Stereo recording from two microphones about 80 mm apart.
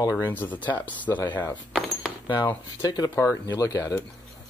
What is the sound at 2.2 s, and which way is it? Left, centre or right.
Cutlery, left.